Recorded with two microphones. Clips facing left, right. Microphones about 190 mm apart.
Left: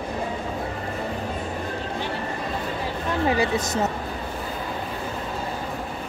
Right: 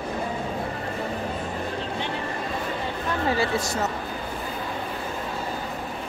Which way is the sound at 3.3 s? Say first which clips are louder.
Left 1 dB; 20° left (ahead or behind).